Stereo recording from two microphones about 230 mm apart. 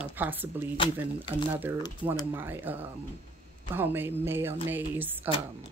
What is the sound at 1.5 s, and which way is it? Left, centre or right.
Speech, centre.